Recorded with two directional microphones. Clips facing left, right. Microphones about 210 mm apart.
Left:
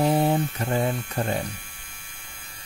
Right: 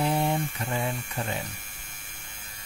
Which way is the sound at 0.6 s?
45° left (ahead or behind).